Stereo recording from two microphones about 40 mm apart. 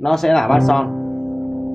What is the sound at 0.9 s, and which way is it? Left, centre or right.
Music, right.